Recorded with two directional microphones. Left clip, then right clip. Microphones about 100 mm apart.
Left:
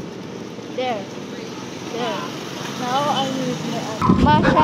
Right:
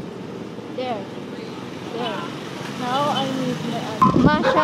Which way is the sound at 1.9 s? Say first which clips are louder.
Left 2 dB; 20° left (ahead or behind).